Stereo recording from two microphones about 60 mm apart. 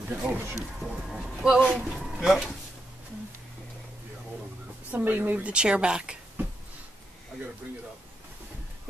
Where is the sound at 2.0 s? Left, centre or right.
Centre.